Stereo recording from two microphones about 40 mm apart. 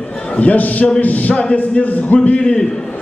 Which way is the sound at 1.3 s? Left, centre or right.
Left.